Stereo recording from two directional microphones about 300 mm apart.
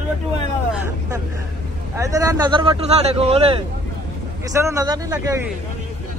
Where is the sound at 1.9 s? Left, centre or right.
Centre.